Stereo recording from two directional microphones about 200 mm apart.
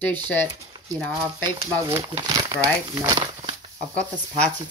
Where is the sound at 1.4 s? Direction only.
20° right (ahead or behind).